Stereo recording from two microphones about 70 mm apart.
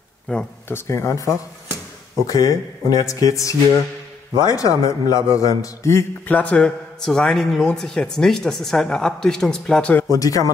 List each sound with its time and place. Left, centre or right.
0.3 s a man's voice: centre
0.7 s speech: left
2.2 s a man's voice: left
6.2 s a man's voice: left
10.0 s a man's voice: left